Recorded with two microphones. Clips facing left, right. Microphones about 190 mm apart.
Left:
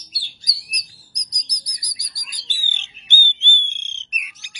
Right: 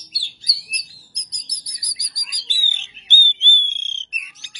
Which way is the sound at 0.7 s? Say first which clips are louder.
Even; 30° right (ahead or behind).